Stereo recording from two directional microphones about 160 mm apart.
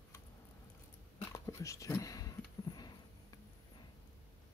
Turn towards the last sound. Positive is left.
turn(degrees=25)  # may be behind; listen again after turning